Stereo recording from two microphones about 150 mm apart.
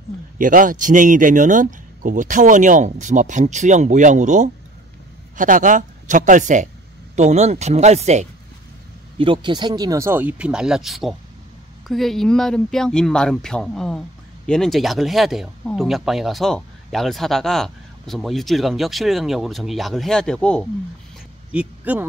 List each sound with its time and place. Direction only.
0.4 s speech: 65° right (ahead or behind)
9.2 s speech: 35° right (ahead or behind); by 20.6 s 5° left (ahead or behind)
21.5 s speech: 10° right (ahead or behind)